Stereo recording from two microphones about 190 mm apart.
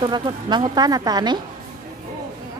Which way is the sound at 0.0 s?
25° right (ahead or behind).